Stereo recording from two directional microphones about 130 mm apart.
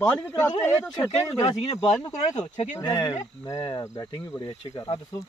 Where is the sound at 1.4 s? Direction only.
50° left (ahead or behind).